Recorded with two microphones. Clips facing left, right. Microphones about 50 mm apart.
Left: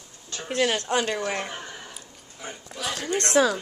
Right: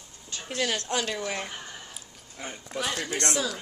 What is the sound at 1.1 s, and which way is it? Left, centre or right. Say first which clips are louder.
Speech: left 4 dB; left.